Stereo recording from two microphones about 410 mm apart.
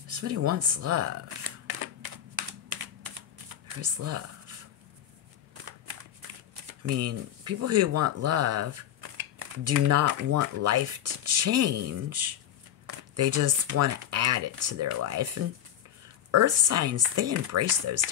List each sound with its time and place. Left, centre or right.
0.1 s speech: right
3.8 s speech: right
6.8 s speech: right